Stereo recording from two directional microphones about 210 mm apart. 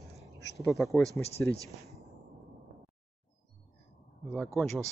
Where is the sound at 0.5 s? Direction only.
Centre (ahead or behind).